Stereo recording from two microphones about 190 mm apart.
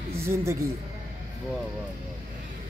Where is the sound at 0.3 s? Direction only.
15° right (ahead or behind).